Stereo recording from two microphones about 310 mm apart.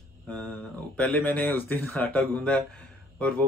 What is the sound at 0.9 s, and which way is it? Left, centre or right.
Speech, centre.